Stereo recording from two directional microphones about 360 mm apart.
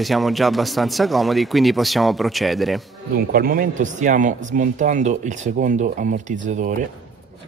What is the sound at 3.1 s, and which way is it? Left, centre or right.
Speech, right.